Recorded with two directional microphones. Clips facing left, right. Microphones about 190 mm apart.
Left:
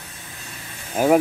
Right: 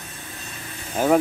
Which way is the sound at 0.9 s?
10° left (ahead or behind).